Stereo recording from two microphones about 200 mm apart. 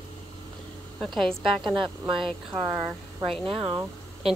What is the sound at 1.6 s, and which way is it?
Speech, 25° right (ahead or behind).